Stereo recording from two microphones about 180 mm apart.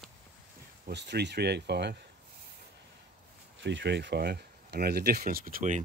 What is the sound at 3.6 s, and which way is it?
Speech, 80° right.